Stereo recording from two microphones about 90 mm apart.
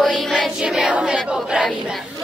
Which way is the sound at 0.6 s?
10° right (ahead or behind).